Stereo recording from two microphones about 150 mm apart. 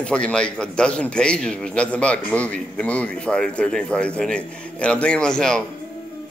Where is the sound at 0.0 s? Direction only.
5° left (ahead or behind).